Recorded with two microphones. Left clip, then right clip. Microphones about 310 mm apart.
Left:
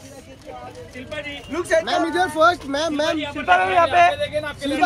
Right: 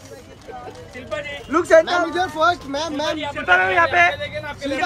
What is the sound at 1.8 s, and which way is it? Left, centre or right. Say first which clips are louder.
A man's voice: even; left.